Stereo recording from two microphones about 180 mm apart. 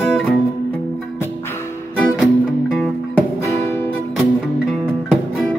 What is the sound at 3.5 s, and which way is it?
Music, 15° left (ahead or behind).